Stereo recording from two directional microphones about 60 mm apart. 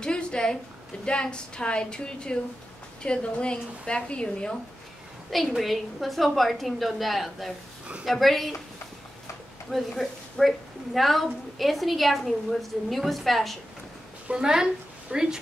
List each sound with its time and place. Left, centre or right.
0.0 s a woman's voice: centre
5.6 s a woman's voice: centre
9.7 s a woman's voice: centre
14.2 s a woman's voice: centre